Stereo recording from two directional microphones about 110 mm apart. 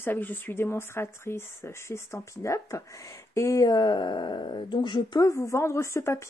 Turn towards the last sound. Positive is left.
turn(degrees=25)  # may be behind; listen again after turning